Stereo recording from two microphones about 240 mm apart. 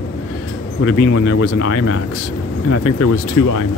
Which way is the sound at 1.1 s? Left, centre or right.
Left.